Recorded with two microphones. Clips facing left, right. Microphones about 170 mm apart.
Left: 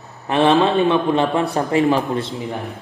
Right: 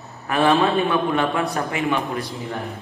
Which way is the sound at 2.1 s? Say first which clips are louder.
Left 5 dB; 25° left (ahead or behind).